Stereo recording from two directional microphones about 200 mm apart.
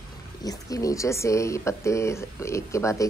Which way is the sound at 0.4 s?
15° left (ahead or behind).